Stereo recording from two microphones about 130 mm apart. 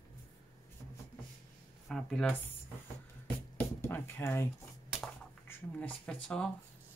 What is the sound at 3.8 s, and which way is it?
Drawer open or close, 15° left (ahead or behind).